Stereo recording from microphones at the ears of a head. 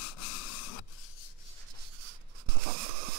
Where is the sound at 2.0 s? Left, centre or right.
Right.